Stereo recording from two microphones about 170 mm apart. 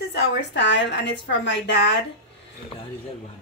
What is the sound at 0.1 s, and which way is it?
A woman's voice, 90° left.